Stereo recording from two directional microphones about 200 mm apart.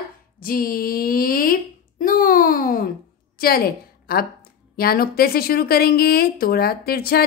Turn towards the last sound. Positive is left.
turn(degrees=50)  # may be behind; listen again after turning